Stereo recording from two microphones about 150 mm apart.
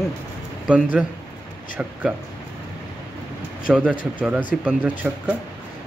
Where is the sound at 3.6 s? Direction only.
5° right (ahead or behind).